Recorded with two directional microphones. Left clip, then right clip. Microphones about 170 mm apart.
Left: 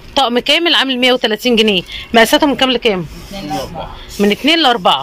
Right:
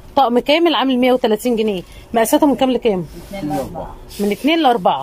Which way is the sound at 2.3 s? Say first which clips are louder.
Left 2 dB; 20° right (ahead or behind).